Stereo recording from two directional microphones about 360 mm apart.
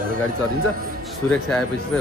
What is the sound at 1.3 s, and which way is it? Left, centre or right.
Speech, centre.